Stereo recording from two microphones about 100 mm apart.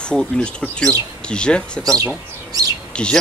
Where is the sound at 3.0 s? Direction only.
10° left (ahead or behind).